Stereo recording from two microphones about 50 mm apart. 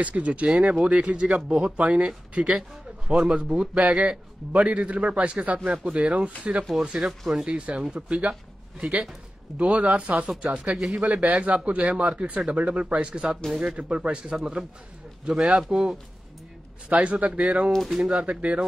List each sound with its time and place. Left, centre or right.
0.0 s speech: right
0.5 s speech: centre
7.0 s speech: centre
7.4 s speech: right
9.6 s speech: right
10.8 s speech: centre
11.1 s a man's voice: right
16.9 s speech: right
18.2 s speech: right